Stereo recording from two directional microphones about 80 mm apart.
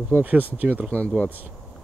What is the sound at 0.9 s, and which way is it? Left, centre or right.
Speech, centre.